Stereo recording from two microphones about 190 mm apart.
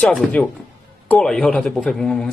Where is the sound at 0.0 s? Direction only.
5° left (ahead or behind).